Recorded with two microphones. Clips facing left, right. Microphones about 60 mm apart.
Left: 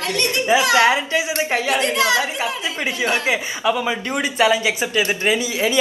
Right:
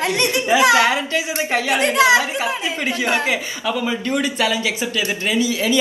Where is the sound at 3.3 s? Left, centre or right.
Left.